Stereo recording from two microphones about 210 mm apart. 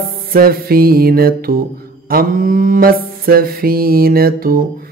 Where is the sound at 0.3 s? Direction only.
45° right (ahead or behind).